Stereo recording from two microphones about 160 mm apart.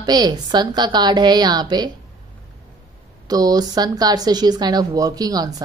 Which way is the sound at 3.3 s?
25° right (ahead or behind).